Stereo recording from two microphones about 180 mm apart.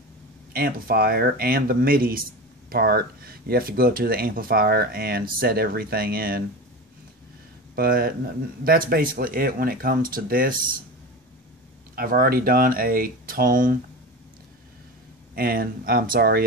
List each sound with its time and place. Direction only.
0.5 s speech: 55° right (ahead or behind)
7.7 s speech: 55° right (ahead or behind)
11.9 s speech: 55° right (ahead or behind)
15.3 s speech: 55° right (ahead or behind)